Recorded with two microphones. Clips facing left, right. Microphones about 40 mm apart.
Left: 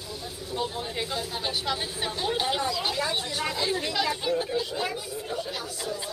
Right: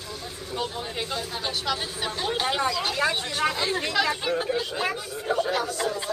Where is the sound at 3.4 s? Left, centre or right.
Right.